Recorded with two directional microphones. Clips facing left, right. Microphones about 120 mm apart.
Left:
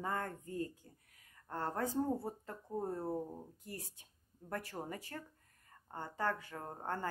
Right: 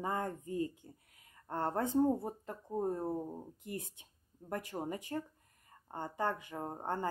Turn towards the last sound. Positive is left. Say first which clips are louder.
# right 3 dB
turn(degrees=-20)  # may be behind; listen again after turning